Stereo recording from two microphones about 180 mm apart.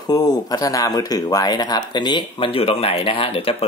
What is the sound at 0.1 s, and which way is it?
Speech, 20° left (ahead or behind).